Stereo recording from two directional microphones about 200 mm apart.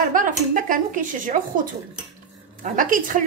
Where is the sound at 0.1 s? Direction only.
40° right (ahead or behind).